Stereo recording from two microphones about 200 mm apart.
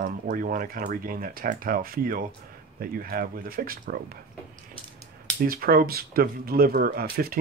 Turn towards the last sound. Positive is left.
turn(degrees=-50)  # may be behind; listen again after turning